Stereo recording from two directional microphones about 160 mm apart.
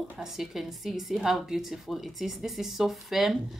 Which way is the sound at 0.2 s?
Centre (ahead or behind).